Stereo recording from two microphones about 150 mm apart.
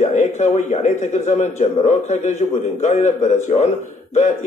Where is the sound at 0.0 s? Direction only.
50° left (ahead or behind).